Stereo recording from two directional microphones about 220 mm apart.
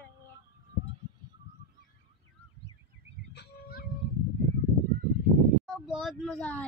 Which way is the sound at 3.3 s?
45° left (ahead or behind).